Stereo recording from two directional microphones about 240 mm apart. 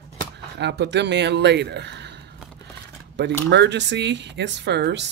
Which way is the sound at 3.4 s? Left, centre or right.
Right.